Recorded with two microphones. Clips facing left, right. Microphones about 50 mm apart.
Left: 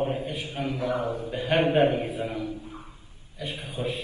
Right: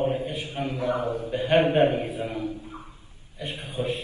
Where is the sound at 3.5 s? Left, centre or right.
Right.